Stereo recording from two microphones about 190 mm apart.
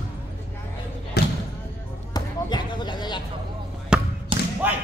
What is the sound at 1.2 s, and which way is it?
Basketball bounce, 60° left (ahead or behind).